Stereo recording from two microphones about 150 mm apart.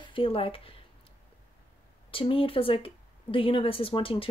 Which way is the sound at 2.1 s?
35° left (ahead or behind).